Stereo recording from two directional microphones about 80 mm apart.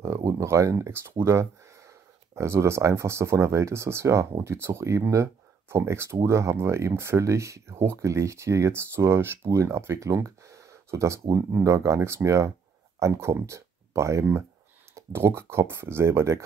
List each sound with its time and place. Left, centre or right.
0.0 s speech: right